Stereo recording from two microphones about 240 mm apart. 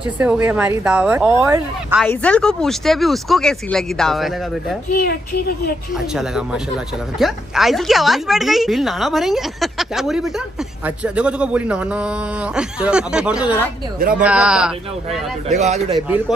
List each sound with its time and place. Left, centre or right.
0.2 s speech: centre
2.0 s speech: centre
4.9 s a woman's voice: left
7.2 s speech: centre
15.4 s a man's voice: right